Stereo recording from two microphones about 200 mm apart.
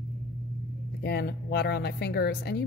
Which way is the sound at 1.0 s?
55° left (ahead or behind).